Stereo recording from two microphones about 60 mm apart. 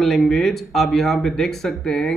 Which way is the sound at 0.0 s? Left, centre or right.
Centre.